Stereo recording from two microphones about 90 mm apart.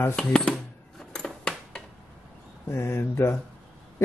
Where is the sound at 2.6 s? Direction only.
30° left (ahead or behind).